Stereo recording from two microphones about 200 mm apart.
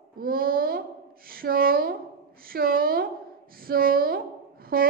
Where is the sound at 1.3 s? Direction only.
45° right (ahead or behind).